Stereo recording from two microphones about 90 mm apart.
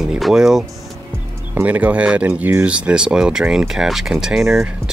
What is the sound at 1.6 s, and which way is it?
Speech, 15° right (ahead or behind).